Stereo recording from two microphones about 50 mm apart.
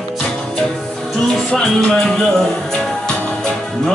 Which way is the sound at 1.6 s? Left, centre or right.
Centre.